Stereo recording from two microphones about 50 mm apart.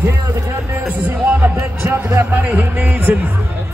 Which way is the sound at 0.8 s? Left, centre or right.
Right.